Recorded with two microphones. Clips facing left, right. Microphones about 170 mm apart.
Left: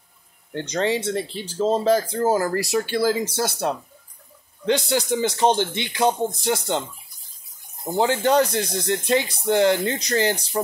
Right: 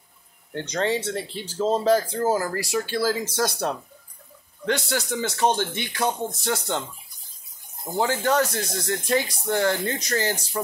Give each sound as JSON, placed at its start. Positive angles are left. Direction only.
{"t": 0.7, "sound": "speech", "side_deg": 15}
{"t": 2.2, "sound": "speech", "side_deg": 25}
{"t": 4.6, "sound": "speech", "side_deg": 20}
{"t": 8.0, "sound": "speech", "side_deg": 20}